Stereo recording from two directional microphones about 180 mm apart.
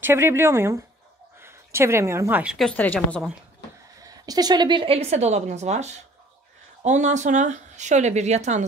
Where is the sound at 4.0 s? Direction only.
20° right (ahead or behind); by 8.6 s 40° right (ahead or behind).